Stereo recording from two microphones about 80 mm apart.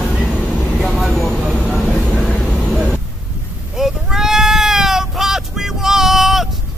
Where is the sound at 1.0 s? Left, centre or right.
Centre.